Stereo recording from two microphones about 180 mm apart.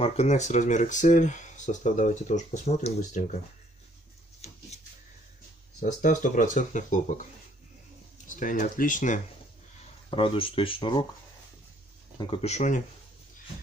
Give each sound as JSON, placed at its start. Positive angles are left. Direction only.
{"t": 0.0, "sound": "speech", "side_deg": 40}
{"t": 4.4, "sound": "a sound", "side_deg": 40}
{"t": 5.8, "sound": "speech", "side_deg": 45}
{"t": 8.3, "sound": "speech", "side_deg": 45}
{"t": 10.0, "sound": "speech", "side_deg": 30}
{"t": 12.2, "sound": "speech", "side_deg": 30}